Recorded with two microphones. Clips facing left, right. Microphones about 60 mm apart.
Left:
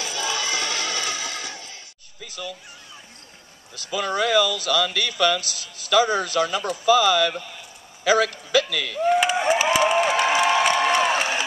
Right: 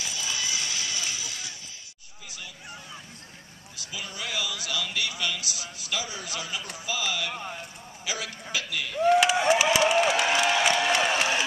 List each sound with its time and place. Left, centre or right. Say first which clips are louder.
0.0 s music: left 6 dB; left
3.7 s a man's voice: left 14 dB; left
9.0 s a sound: left 1 dB; centre